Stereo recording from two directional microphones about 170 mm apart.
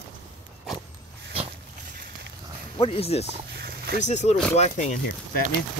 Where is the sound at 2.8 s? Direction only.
35° left (ahead or behind).